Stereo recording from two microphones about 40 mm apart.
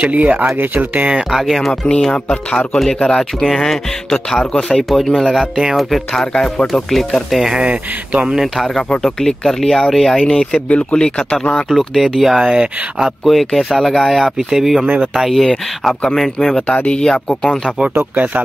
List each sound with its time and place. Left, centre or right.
0.0 s speech: right
1.3 s speech: centre
2.2 s speech: left
3.1 s speech: centre
4.7 s speech: centre
7.3 s speech: centre
7.6 s speech: right
9.0 s speech: centre
10.7 s speech: left
11.7 s speech: centre
12.4 s speech: centre
13.2 s speech: centre
16.6 s speech: left
16.9 s speech: centre